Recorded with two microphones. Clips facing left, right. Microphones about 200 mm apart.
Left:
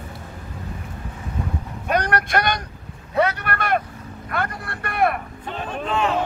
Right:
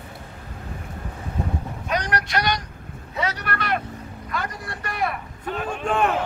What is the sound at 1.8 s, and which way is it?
Vehicle, 55° left (ahead or behind).